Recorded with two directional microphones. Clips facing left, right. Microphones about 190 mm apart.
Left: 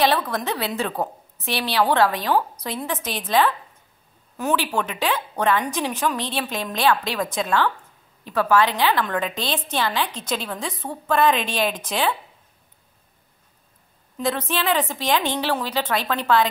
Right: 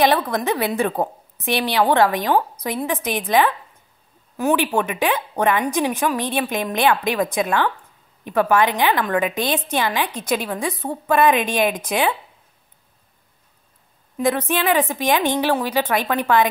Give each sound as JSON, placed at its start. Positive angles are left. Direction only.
{"t": 0.3, "sound": "a woman's voice", "side_deg": -15}
{"t": 14.1, "sound": "a woman's voice", "side_deg": -15}